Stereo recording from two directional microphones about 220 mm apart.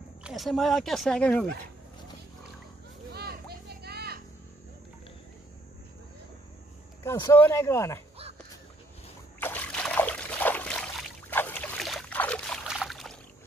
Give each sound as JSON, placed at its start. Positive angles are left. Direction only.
{"t": 0.2, "sound": "speech", "side_deg": 0}
{"t": 3.1, "sound": "children playing", "side_deg": -45}
{"t": 7.0, "sound": "speech", "side_deg": 15}
{"t": 9.4, "sound": "trickle", "side_deg": 5}